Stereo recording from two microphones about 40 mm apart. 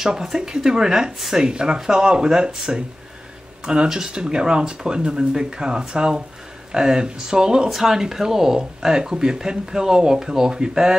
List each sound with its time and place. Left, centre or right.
0.0 s speech: centre